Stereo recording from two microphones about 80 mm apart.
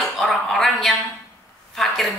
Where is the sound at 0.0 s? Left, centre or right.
Centre.